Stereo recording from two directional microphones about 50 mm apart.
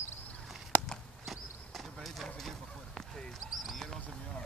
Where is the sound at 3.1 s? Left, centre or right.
Centre.